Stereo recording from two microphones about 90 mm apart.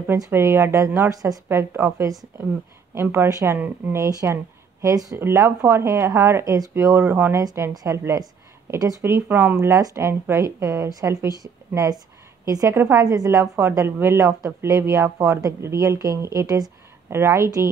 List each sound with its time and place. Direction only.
0.3 s a woman's voice: 30° right (ahead or behind)
3.3 s speech: 40° right (ahead or behind)
3.5 s a woman's voice: 25° right (ahead or behind); by 8.0 s 40° right (ahead or behind)
9.0 s a woman's voice: 25° right (ahead or behind)
9.6 s a woman's voice: 35° right (ahead or behind)
13.0 s a woman's voice: 40° right (ahead or behind)